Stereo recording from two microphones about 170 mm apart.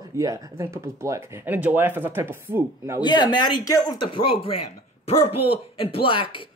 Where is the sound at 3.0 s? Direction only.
25° left (ahead or behind).